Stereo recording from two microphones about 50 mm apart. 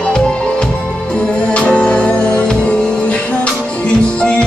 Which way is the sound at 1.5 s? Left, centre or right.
Left.